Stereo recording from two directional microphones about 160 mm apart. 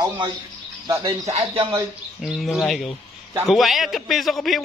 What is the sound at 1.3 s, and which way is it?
Speech, 40° right (ahead or behind).